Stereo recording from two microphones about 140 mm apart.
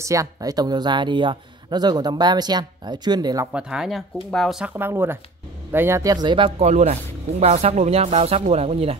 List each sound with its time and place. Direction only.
0.0 s speech: 25° right (ahead or behind)
3.5 s speech: 5° right (ahead or behind); by 6.5 s 35° right (ahead or behind)
6.6 s speech: 55° right (ahead or behind)